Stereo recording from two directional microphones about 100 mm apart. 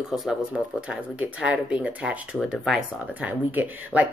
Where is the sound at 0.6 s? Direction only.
10° right (ahead or behind).